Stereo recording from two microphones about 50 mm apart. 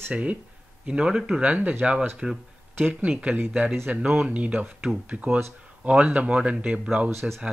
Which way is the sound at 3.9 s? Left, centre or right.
Right.